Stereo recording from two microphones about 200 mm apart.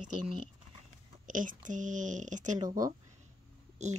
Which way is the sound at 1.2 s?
40° right (ahead or behind).